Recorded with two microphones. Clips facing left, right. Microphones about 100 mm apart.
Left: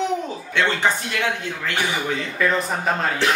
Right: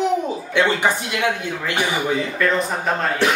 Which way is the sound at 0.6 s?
15° right (ahead or behind).